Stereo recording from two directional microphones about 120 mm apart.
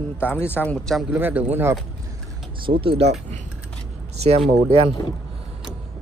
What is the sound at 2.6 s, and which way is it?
Speech, 45° right (ahead or behind).